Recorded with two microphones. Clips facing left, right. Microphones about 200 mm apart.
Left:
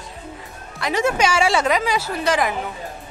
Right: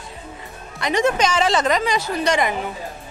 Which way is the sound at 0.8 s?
5° left (ahead or behind).